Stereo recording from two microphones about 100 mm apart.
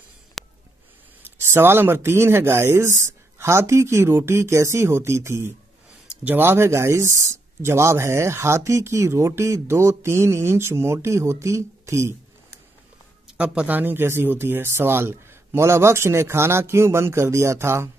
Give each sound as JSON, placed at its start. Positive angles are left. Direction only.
{"t": 0.4, "sound": "a sound", "side_deg": 0}
{"t": 1.4, "sound": "speech", "side_deg": -25}
{"t": 13.4, "sound": "speech", "side_deg": -15}